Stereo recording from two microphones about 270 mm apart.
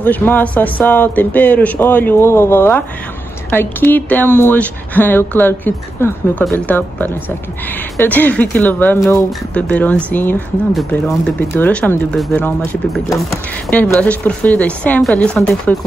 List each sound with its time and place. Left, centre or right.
0.0 s speech: centre